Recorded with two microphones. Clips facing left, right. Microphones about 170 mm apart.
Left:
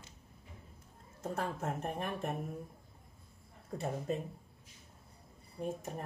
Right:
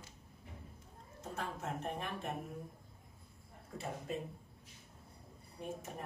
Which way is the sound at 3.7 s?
40° left (ahead or behind).